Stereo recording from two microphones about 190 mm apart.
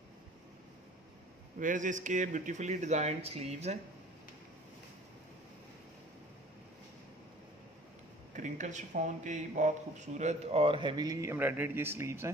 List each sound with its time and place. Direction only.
1.6 s speech: 40° right (ahead or behind)
8.3 s speech: 40° right (ahead or behind); by 12.3 s 15° right (ahead or behind)